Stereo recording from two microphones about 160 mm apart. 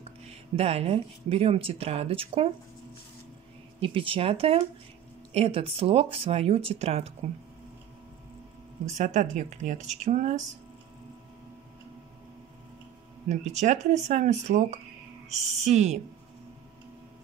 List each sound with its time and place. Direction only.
0.0 s speech: 40° right (ahead or behind)
3.8 s speech: 35° right (ahead or behind)
8.8 s speech: 50° right (ahead or behind)
13.3 s speech: 45° right (ahead or behind)